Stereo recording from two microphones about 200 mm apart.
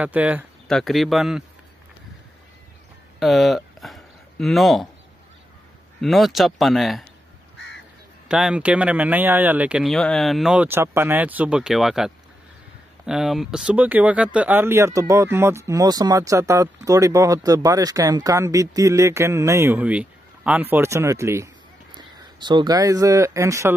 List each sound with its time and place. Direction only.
0.0 s speech: 5° right (ahead or behind)
3.2 s a sound: centre (ahead or behind)
5.9 s speech: centre (ahead or behind)
8.3 s speech: 5° right (ahead or behind)